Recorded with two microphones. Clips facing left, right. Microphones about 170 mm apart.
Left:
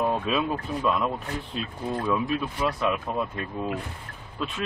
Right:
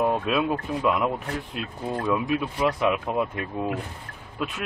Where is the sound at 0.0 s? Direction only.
10° right (ahead or behind).